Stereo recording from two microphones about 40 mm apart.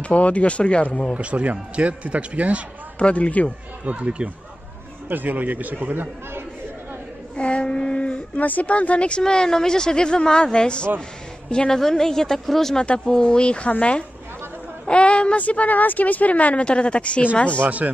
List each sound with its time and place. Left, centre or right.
0.0 s speech: left
1.1 s a man's voice: right
3.0 s speech: left
3.8 s a man's voice: right
5.1 s speech: right
7.3 s speech: left
9.2 s a woman's voice: centre
12.7 s a woman's voice: left
14.9 s a woman's voice: left
15.4 s speech: left
16.6 s a woman's voice: left
17.6 s a man's voice: right